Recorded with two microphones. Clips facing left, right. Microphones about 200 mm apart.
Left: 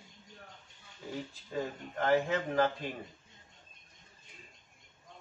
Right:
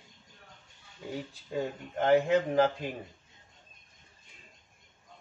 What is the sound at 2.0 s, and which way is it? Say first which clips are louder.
Speech: right 5 dB; 20° right (ahead or behind).